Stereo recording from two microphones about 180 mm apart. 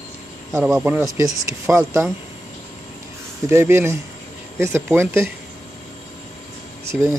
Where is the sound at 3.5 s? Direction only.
15° right (ahead or behind).